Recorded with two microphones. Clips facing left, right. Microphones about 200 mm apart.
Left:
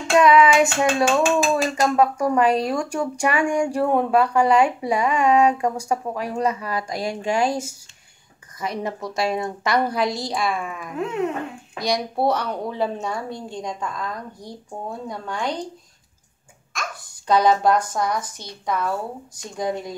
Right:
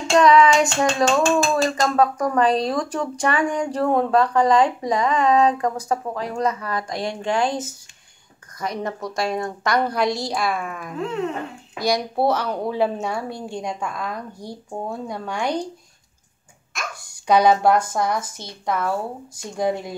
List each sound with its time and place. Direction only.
0.1 s a sound: 5° left (ahead or behind)
8.5 s a woman's voice: 5° left (ahead or behind); by 15.5 s 10° right (ahead or behind)
16.7 s speech: 10° right (ahead or behind)
19.3 s a woman's voice: 5° right (ahead or behind)